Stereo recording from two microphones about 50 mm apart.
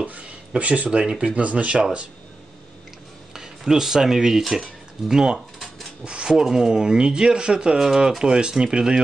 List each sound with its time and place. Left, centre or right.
0.0 s a sound: right
0.8 s speech: centre
3.3 s speech: centre